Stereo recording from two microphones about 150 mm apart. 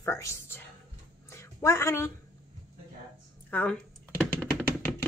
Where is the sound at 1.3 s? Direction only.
20° left (ahead or behind).